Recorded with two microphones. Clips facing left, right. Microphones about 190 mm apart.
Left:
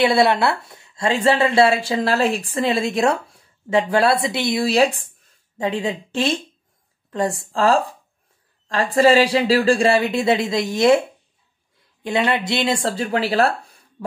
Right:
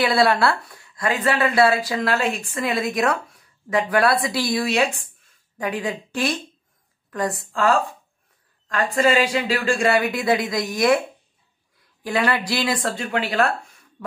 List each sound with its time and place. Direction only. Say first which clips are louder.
0.0 s speech: left 2 dB; 20° left (ahead or behind)
12.0 s speech: left 2 dB; 25° left (ahead or behind)